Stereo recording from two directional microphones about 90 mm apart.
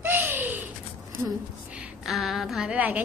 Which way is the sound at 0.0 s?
20° right (ahead or behind).